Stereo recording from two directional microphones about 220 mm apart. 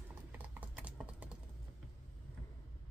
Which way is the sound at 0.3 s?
5° right (ahead or behind).